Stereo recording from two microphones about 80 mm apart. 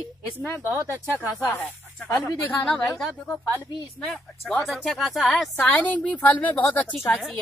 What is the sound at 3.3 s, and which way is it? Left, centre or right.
Speech, centre.